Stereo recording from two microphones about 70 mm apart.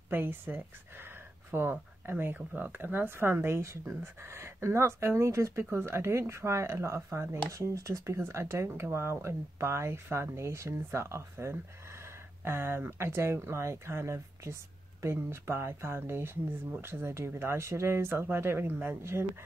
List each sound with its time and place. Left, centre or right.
0.1 s speech: right